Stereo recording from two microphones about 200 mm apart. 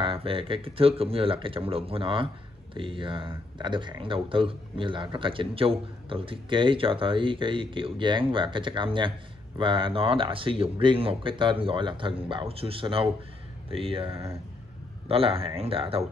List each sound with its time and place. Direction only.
0.0 s speech: 25° right (ahead or behind)